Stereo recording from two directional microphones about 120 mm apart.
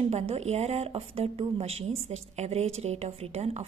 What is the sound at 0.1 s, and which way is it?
A woman's voice, 60° right (ahead or behind).